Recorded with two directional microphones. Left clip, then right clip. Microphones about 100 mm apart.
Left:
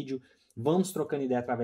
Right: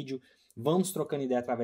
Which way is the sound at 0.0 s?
20° right (ahead or behind).